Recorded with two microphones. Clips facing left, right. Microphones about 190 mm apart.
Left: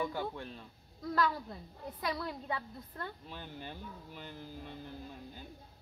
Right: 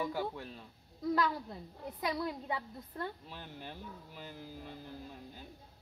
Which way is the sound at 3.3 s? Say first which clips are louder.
Left 2 dB; centre (ahead or behind).